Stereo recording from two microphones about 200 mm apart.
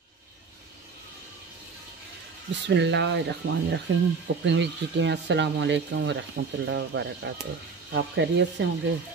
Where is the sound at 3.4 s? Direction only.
80° right.